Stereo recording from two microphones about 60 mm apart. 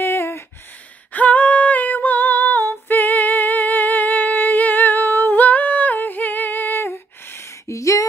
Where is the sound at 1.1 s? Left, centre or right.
Left.